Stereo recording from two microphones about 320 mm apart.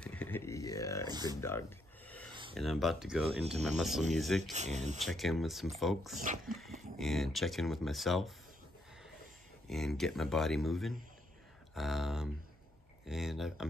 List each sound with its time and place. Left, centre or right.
0.0 s a sound: centre
1.0 s speech: centre
1.4 s a sound: centre
2.5 s speech: centre
4.4 s speech: right
5.0 s speech: centre
9.7 s speech: centre